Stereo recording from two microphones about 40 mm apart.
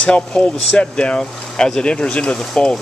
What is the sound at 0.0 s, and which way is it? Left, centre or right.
Speech, left.